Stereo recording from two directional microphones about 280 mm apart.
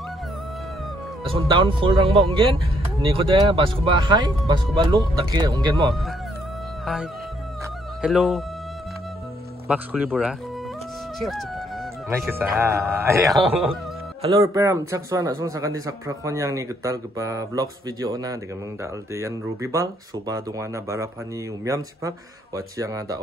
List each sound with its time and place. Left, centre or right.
1.2 s speech: centre
8.0 s speech: centre
9.7 s speech: centre
14.2 s speech: centre